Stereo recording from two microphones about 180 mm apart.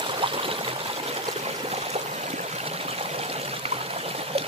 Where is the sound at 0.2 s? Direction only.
30° right (ahead or behind).